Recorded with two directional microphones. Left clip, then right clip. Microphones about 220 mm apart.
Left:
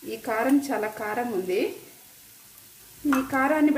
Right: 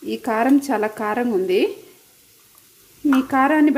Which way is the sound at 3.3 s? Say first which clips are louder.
Right 7 dB; 45° right (ahead or behind).